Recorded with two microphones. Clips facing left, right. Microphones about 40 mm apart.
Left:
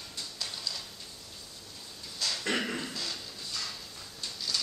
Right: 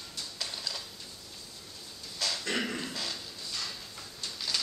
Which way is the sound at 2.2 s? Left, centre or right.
Centre.